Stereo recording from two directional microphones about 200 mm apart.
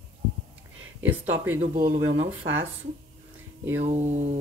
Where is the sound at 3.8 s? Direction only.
35° right (ahead or behind).